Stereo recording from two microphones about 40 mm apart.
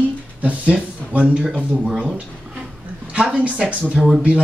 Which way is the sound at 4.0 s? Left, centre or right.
Centre.